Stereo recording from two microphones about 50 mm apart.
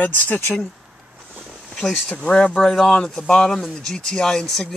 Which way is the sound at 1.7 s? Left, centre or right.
Centre.